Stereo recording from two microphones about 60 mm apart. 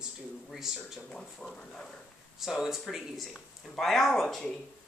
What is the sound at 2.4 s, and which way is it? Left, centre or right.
Speech, centre.